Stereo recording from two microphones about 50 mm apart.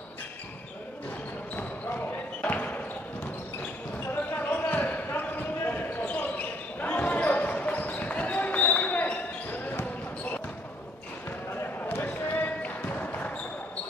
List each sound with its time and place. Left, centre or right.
1.6 s basketball bounce: left
4.1 s basketball bounce: left
11.5 s basketball bounce: left